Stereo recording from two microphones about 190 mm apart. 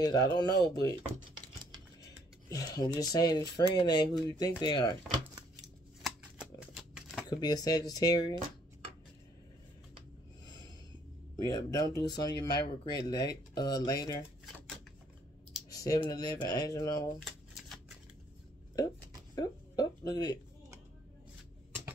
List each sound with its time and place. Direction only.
0.0 s speech: 20° left (ahead or behind)
2.5 s speech: 20° left (ahead or behind)
6.0 s a sound: 5° right (ahead or behind)
7.2 s speech: 20° left (ahead or behind)
11.4 s speech: 20° left (ahead or behind)
15.7 s speech: 20° left (ahead or behind)
19.3 s a sound: 20° left (ahead or behind)
20.1 s speech: 20° left (ahead or behind)